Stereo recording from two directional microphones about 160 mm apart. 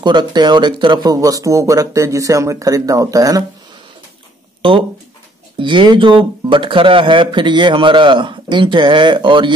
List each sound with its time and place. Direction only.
0.0 s speech: 30° right (ahead or behind)
4.6 s speech: 35° right (ahead or behind)